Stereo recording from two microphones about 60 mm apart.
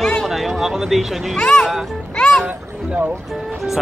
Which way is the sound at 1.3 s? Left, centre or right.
Centre.